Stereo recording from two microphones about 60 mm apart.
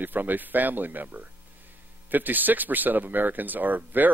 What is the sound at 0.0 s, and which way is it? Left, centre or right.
Speech, right.